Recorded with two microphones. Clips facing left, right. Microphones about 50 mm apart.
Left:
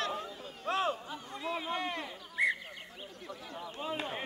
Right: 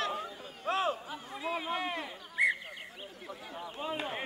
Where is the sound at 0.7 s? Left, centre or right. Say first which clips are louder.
Right 1 dB; centre.